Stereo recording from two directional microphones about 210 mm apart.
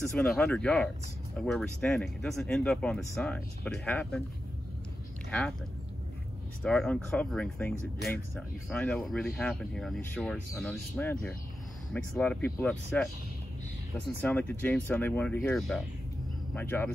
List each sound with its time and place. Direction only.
0.1 s speech: 5° left (ahead or behind)
6.6 s speech: 5° left (ahead or behind)